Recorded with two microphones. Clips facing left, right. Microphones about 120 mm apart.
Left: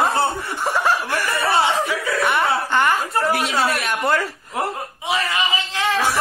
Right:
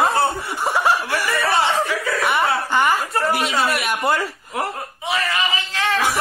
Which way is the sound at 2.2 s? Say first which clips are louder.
Even; 5° right (ahead or behind).